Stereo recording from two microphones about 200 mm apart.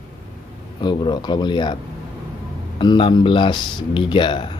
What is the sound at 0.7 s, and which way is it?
Speech, 20° left (ahead or behind).